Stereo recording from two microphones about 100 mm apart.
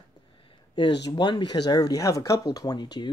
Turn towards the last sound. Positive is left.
turn(degrees=45)  # may be behind; listen again after turning